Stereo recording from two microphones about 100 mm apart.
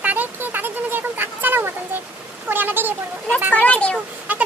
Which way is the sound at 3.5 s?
15° left (ahead or behind).